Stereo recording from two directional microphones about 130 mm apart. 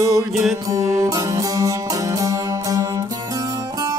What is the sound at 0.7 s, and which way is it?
Music, 25° right (ahead or behind).